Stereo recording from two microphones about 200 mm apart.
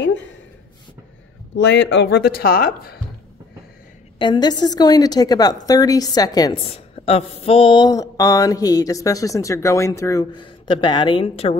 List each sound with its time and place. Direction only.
1.6 s speech: 60° left (ahead or behind)
4.2 s a woman's voice: 20° left (ahead or behind)
6.7 s mantra: 30° left (ahead or behind)